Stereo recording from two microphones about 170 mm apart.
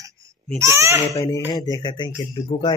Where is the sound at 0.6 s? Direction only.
15° right (ahead or behind).